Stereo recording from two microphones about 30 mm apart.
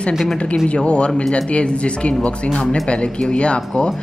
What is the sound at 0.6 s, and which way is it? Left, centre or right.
Speech, left.